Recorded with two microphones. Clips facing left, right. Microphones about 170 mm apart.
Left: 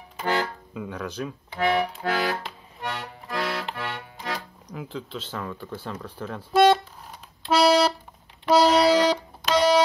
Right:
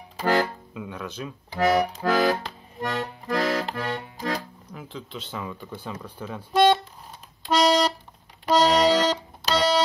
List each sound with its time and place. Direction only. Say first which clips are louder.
0.7 s speech: left 3 dB; centre (ahead or behind)
1.5 s accordion: right 3 dB; 40° right (ahead or behind)
4.7 s speech: left 3 dB; centre (ahead or behind)
7.5 s music: left 1 dB; 5° left (ahead or behind)